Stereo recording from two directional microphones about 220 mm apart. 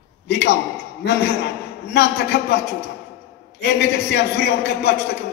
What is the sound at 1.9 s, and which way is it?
A man's voice, 50° left (ahead or behind).